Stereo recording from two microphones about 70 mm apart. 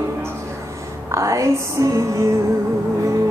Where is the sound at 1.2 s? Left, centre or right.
Right.